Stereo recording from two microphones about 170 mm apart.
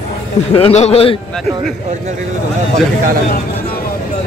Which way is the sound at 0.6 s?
40° left (ahead or behind).